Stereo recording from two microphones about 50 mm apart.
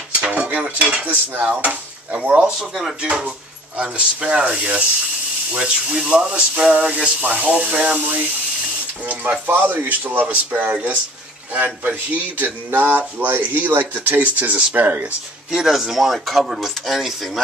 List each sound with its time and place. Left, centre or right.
0.2 s cutlery: right
1.0 s speech: right
1.4 s speech: right
2.7 s speech: centre
3.0 s speech: centre
15.5 s speech: centre